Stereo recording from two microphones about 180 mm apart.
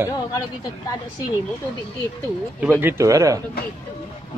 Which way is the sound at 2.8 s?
15° right (ahead or behind).